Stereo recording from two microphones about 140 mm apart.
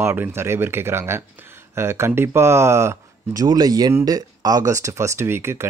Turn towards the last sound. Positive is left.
turn(degrees=-20)  # may be behind; listen again after turning